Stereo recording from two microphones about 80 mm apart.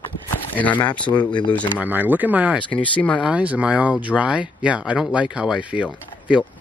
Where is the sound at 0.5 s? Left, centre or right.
Left.